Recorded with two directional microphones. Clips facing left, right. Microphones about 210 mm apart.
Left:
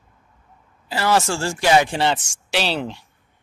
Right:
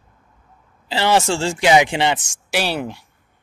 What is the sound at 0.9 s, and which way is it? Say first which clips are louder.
Speech: right 2 dB; 25° right (ahead or behind).